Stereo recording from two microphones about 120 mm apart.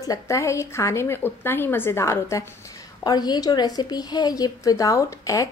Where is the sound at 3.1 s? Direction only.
35° left (ahead or behind).